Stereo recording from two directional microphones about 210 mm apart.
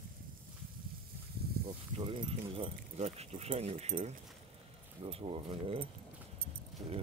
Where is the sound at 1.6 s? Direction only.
25° right (ahead or behind).